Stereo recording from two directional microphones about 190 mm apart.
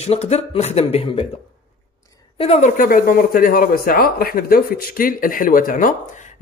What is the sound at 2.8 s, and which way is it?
Speech, 45° left (ahead or behind).